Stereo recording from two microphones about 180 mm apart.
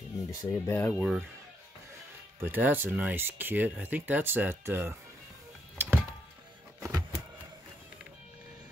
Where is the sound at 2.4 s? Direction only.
10° right (ahead or behind).